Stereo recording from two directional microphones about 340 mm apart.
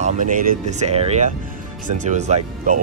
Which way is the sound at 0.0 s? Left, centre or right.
Right.